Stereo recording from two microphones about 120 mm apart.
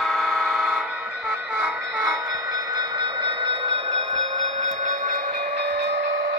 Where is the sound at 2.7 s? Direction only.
40° right (ahead or behind).